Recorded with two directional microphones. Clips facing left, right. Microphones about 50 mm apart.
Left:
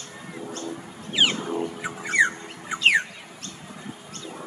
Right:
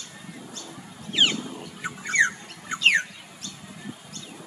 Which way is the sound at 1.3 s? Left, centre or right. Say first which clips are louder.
Left 7 dB; left.